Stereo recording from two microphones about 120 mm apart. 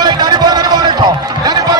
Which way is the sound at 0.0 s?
35° right (ahead or behind).